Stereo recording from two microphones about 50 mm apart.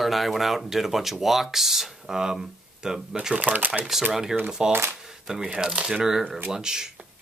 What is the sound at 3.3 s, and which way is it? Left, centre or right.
Speech, right.